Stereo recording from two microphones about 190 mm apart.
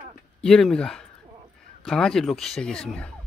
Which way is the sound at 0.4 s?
5° left (ahead or behind).